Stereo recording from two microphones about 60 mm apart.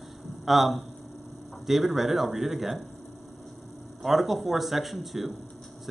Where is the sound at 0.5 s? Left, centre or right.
Centre.